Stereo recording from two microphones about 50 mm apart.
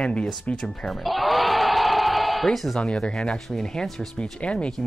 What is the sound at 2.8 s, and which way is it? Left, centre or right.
Speech, centre.